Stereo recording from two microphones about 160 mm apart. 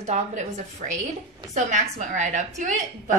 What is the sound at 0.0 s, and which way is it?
A woman's voice, 45° right (ahead or behind).